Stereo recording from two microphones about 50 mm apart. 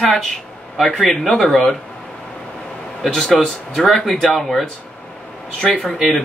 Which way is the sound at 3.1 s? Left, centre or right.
Centre.